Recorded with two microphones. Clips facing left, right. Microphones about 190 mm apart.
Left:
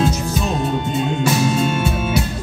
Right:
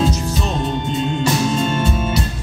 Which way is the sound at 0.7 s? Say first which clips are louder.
Left 1 dB; 10° left (ahead or behind).